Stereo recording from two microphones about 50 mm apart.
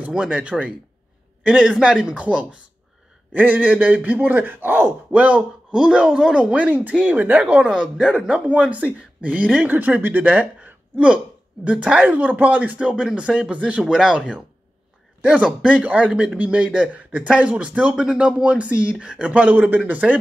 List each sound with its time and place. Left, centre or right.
0.1 s speech: right
1.8 s speech: right
3.6 s speech: right
5.1 s speech: right
6.5 s speech: right; by 8.2 s centre
8.5 s speech: right
9.7 s speech: right
12.0 s speech: right
12.7 s speech: centre
13.8 s speech: centre
17.9 s speech: centre
19.5 s speech: right